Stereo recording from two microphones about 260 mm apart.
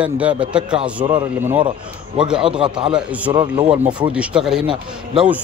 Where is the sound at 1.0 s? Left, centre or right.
Centre.